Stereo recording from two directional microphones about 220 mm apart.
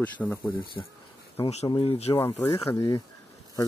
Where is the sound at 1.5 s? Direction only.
25° left (ahead or behind).